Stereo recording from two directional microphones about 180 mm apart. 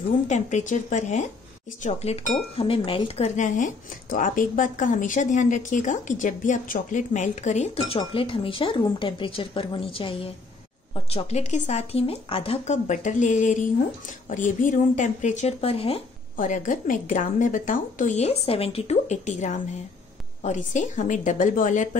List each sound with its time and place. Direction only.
0.3 s speech: 40° left (ahead or behind)
16.3 s a woman's voice: 45° left (ahead or behind)